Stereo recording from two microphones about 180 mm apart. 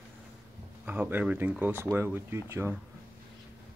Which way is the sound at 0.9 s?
10° right (ahead or behind).